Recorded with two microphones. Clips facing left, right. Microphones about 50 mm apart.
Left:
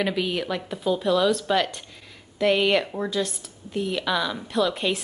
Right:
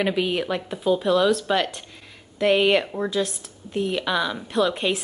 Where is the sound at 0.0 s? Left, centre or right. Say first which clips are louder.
Right 2 dB; centre.